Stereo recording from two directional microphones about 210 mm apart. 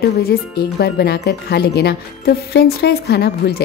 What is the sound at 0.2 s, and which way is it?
Speech, 45° left (ahead or behind).